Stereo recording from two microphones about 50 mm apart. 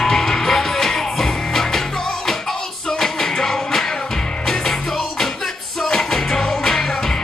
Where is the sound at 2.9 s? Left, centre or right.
Centre.